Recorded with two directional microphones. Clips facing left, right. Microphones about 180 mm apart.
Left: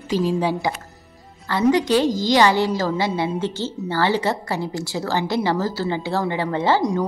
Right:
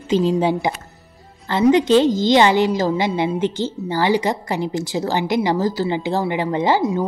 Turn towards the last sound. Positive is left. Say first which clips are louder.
# right 2 dB
turn(degrees=-15)  # may be behind; listen again after turning